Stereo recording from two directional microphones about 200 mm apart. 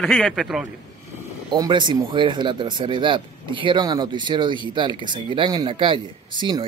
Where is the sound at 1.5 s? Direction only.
20° right (ahead or behind).